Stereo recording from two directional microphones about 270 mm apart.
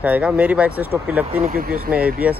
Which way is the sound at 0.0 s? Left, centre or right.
Centre.